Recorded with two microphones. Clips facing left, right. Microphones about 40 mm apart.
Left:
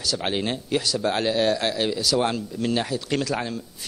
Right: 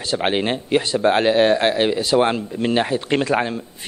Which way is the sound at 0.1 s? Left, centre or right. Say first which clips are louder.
Right 6 dB; right.